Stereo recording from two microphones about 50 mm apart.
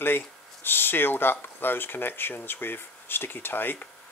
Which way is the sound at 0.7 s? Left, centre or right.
Left.